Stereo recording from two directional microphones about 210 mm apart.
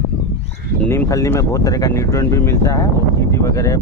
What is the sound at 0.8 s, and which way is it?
Speech, 10° left (ahead or behind).